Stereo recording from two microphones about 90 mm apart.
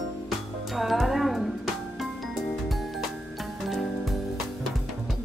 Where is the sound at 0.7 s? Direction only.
Centre (ahead or behind).